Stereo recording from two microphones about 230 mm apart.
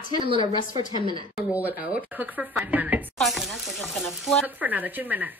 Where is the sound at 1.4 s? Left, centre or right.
Centre.